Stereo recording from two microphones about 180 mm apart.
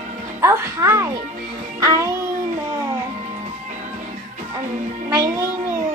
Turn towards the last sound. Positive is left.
turn(degrees=-15)  # may be behind; listen again after turning